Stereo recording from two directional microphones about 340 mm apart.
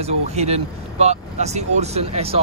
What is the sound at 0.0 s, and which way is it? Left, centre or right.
Speech, centre.